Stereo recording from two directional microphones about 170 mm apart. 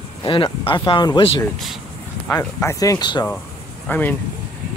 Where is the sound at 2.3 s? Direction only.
20° left (ahead or behind).